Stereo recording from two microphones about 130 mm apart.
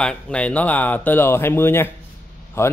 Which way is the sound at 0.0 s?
10° left (ahead or behind).